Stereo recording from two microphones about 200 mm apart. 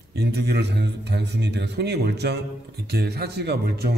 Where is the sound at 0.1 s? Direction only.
55° right (ahead or behind).